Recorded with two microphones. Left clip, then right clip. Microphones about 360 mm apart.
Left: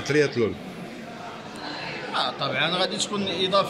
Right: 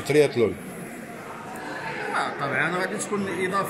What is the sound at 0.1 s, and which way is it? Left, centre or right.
Speech, centre.